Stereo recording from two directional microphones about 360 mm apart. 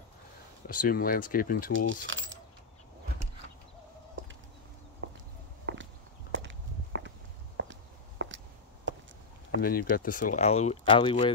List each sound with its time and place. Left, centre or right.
0.7 s speech: left
2.0 s coin: right
5.7 s walk: right
8.2 s a sound: right
9.5 s speech: left